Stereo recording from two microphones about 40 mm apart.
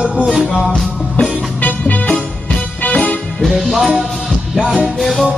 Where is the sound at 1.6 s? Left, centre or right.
Left.